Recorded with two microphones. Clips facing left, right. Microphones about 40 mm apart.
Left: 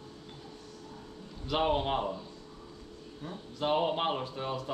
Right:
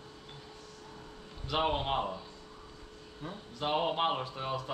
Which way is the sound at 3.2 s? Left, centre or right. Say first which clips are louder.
Left 2 dB; centre.